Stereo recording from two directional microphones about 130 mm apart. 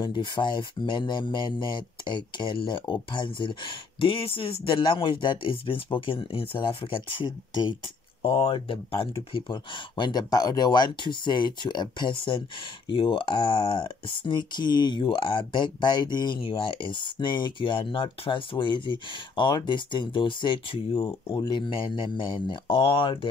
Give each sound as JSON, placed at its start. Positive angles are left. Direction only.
{"t": 0.0, "sound": "speech", "side_deg": 35}
{"t": 8.2, "sound": "speech", "side_deg": 45}
{"t": 21.4, "sound": "speech", "side_deg": 35}